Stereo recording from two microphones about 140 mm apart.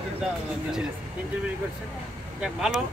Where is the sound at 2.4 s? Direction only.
Centre (ahead or behind).